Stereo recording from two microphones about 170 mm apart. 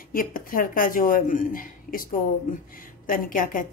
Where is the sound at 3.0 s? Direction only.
55° left (ahead or behind).